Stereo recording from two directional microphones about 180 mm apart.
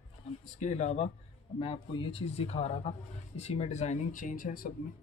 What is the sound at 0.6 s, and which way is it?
Speech, 40° left (ahead or behind).